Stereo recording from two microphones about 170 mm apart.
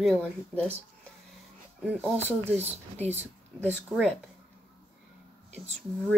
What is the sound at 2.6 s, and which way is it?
Speech, 40° right (ahead or behind).